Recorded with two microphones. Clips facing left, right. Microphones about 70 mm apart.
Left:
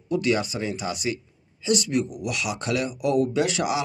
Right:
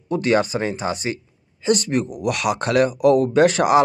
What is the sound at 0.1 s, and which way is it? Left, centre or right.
Speech, right.